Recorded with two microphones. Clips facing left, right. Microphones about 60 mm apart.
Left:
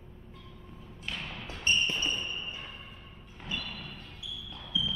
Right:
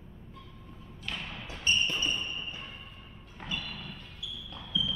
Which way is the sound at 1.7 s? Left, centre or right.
Left.